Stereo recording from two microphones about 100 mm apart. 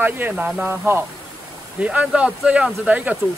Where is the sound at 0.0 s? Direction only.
20° right (ahead or behind).